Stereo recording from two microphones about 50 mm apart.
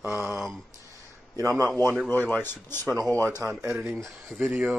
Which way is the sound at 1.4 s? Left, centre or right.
Right.